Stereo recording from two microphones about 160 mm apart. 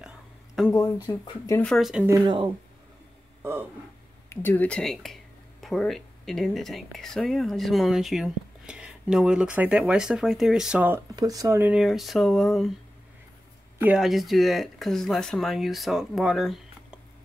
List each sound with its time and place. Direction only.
0.6 s speech: centre (ahead or behind)
1.0 s speech: 25° left (ahead or behind)
1.6 s speech: centre (ahead or behind)
2.2 s speech: 30° right (ahead or behind)
4.3 s speech: 15° left (ahead or behind); by 11.0 s 10° right (ahead or behind)
11.1 s speech: 20° right (ahead or behind); by 12.7 s centre (ahead or behind)
13.8 s speech: centre (ahead or behind)